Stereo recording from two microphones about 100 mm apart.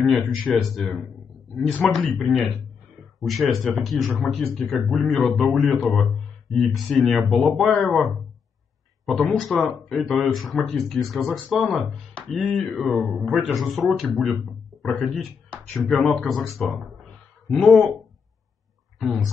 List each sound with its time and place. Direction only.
0.0 s speech: 5° left (ahead or behind)